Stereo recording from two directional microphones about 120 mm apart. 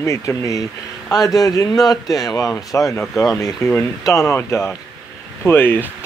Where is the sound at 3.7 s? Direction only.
25° left (ahead or behind).